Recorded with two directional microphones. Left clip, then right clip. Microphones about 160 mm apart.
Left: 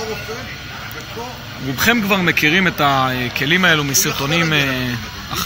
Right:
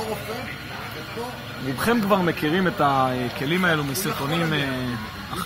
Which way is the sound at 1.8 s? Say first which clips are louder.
Left 5 dB; 25° left (ahead or behind).